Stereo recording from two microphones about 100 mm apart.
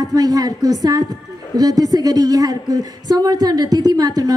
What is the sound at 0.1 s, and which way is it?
A woman's voice, 40° right (ahead or behind).